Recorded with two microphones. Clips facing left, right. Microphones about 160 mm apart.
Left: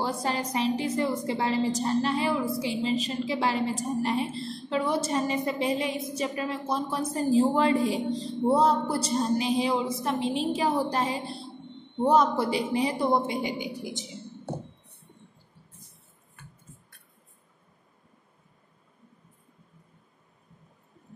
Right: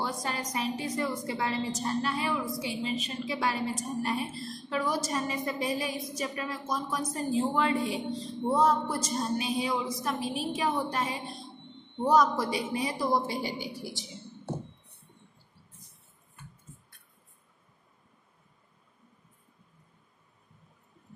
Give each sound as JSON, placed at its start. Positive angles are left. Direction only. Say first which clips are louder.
{"t": 0.0, "sound": "a woman's voice", "louder": "left 5 dB", "side_deg": 30}